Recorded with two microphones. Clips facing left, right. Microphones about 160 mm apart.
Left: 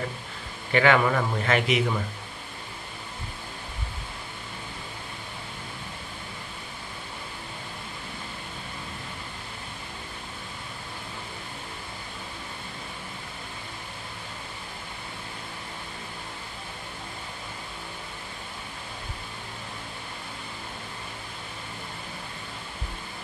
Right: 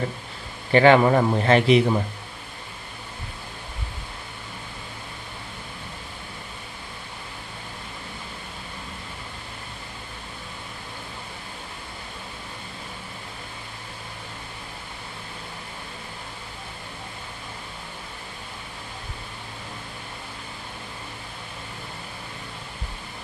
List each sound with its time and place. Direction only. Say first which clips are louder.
0.7 s a man's voice: right 6 dB; 30° right (ahead or behind)